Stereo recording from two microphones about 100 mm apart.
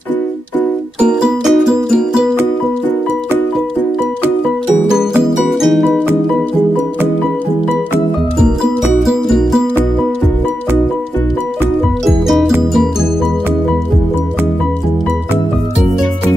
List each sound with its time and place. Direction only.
0.9 s music: 10° right (ahead or behind)
5.6 s music: centre (ahead or behind)
9.0 s music: 5° right (ahead or behind)